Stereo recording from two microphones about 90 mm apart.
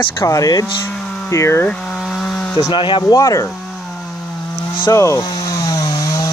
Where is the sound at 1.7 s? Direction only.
10° left (ahead or behind).